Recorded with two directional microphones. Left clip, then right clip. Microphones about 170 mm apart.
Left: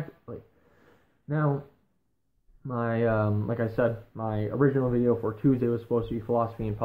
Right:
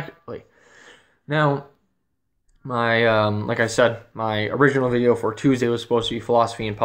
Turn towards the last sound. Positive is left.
turn(degrees=-35)  # may be behind; listen again after turning